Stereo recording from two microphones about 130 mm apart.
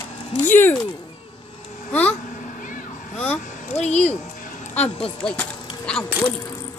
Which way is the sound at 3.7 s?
60° left (ahead or behind).